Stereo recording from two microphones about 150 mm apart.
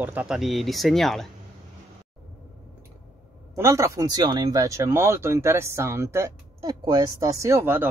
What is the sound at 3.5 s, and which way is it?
Speech, 20° right (ahead or behind).